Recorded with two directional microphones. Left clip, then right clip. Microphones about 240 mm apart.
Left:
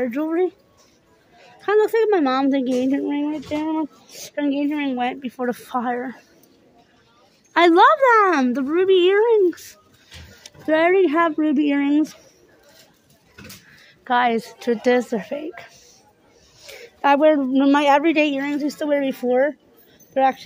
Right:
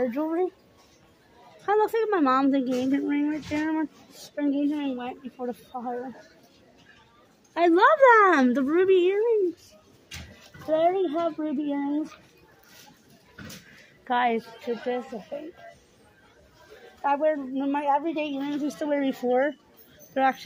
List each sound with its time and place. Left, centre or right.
0.0 s speech: centre
1.7 s speech: centre
4.4 s speech: left
7.5 s speech: left
7.8 s speech: centre
9.0 s speech: left
10.9 s speech: left
14.0 s speech: centre
14.9 s speech: left
17.0 s speech: left
17.9 s speech: left
18.8 s speech: left